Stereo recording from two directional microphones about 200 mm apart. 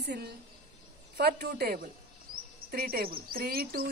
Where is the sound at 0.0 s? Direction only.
55° right (ahead or behind).